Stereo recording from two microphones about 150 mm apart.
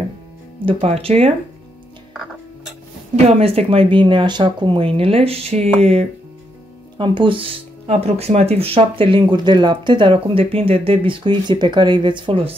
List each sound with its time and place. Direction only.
0.7 s speech: 40° right (ahead or behind)
3.3 s speech: 40° right (ahead or behind)